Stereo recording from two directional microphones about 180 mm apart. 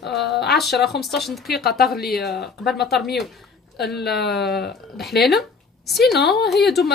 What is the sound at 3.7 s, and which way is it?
Speech, 65° left (ahead or behind).